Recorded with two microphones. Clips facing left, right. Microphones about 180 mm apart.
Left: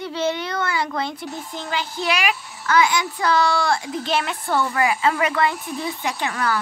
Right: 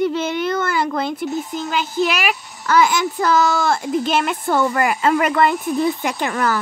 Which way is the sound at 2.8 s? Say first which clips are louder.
Right 3 dB; 50° right (ahead or behind).